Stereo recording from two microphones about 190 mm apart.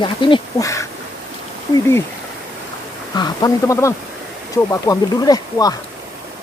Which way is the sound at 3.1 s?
20° left (ahead or behind).